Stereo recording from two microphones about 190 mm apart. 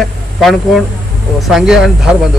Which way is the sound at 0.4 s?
Centre (ahead or behind).